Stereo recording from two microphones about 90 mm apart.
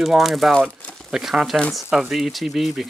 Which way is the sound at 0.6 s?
15° left (ahead or behind).